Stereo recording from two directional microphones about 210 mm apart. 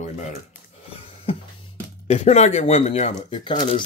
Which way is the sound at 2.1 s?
30° left (ahead or behind).